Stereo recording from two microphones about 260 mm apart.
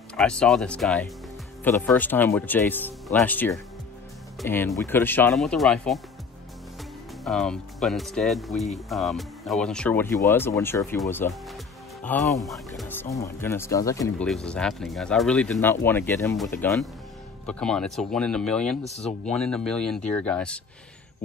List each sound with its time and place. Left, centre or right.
0.1 s speech: centre
7.2 s speech: centre
18.9 s speech: left
19.3 s speech: centre